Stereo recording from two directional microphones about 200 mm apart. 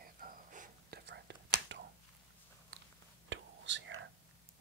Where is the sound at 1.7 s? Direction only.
65° right (ahead or behind).